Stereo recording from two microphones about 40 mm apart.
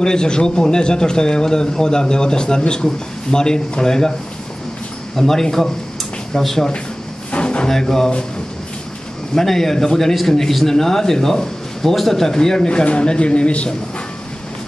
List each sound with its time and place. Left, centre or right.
0.0 s speech: centre
5.1 s a man's voice: centre
7.2 s a sound: left
7.6 s a man's voice: centre
9.3 s a man's voice: centre; by 13.7 s left